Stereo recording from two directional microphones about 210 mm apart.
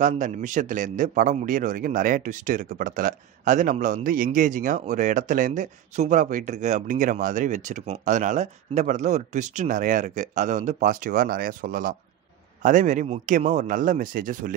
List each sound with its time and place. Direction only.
0.0 s a man's voice: 35° right (ahead or behind)